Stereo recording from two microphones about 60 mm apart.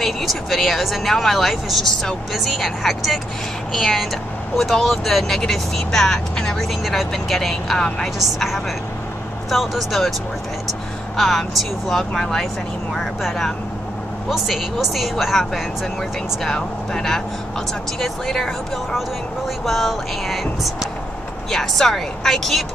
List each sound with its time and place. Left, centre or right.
0.0 s speech: centre
11.1 s speech: centre